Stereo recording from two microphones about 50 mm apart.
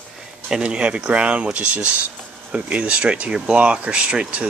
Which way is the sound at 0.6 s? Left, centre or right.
Right.